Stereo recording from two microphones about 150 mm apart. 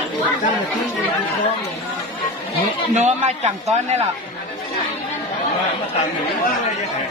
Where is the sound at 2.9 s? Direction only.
50° right (ahead or behind).